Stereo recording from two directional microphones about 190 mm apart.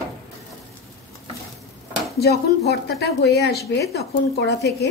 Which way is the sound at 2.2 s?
60° left (ahead or behind).